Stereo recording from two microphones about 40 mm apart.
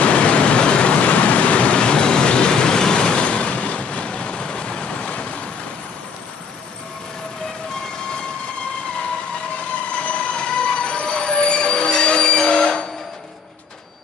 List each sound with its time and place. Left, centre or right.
0.0 s vehicle: left
9.9 s train: left